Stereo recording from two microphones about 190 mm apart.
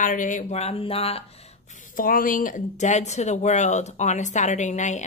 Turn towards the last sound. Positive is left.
turn(degrees=40)  # may be behind; listen again after turning